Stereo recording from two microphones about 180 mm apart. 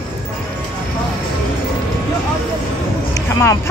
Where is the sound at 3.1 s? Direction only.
15° left (ahead or behind).